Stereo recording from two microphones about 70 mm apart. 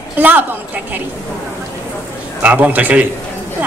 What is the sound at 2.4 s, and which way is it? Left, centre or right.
Speech, right.